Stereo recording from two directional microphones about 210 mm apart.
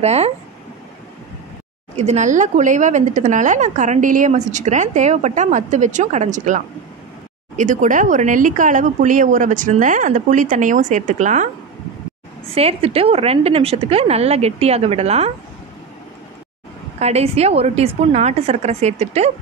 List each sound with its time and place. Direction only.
0.0 s speech: 30° right (ahead or behind)
2.0 s a woman's voice: 35° right (ahead or behind)
17.0 s speech: 30° right (ahead or behind)